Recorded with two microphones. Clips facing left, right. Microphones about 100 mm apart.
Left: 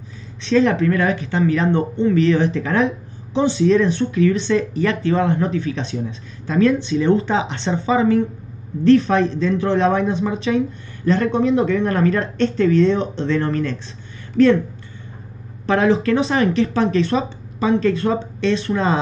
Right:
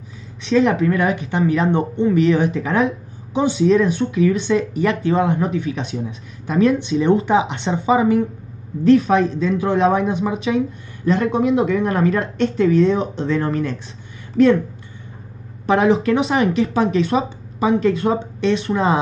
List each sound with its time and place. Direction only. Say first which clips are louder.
0.4 s speech: even; 5° right (ahead or behind)
0.8 s speech: even; 20° right (ahead or behind)
6.6 s speech: even; 25° right (ahead or behind); by 14.6 s 10° right (ahead or behind)
15.6 s speech: right 1 dB; 25° right (ahead or behind)
16.3 s speech: even; 5° right (ahead or behind)